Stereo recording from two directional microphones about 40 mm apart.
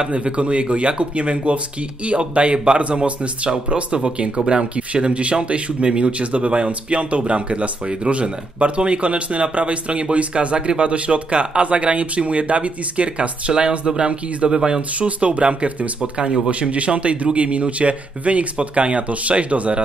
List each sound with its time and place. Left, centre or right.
0.0 s speech: right
15.0 s speech: right